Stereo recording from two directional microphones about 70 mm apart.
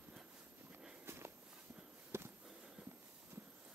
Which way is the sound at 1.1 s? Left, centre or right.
Right.